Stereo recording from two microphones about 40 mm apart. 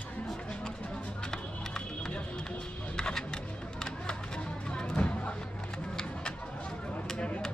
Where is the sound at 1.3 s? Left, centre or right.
Centre.